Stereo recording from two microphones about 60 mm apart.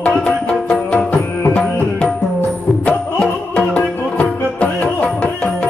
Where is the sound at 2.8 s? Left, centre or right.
Centre.